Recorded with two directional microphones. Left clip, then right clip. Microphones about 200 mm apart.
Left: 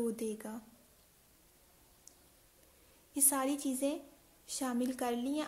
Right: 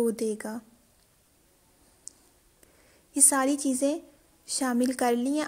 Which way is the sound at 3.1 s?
40° right (ahead or behind).